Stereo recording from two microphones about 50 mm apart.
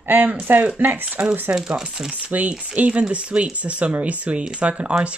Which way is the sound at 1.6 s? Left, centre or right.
Centre.